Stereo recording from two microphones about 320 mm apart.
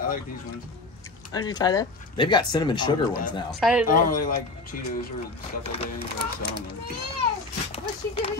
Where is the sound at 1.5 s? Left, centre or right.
Centre.